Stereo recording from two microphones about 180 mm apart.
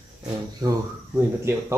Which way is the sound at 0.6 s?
20° right (ahead or behind).